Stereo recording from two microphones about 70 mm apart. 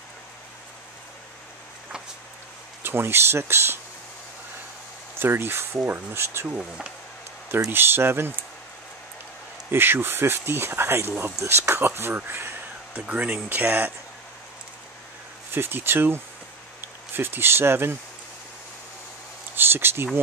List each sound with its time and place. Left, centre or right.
2.8 s speech: right
5.2 s speech: right
6.4 s speech: centre
7.7 s speech: right
9.7 s speech: right
13.0 s speech: centre
13.5 s speech: right
15.5 s speech: right
19.5 s a sound: right